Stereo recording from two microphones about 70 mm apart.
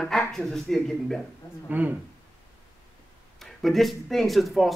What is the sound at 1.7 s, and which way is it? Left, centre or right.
Speech, right.